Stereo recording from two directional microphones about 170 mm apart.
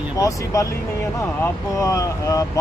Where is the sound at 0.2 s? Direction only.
20° left (ahead or behind).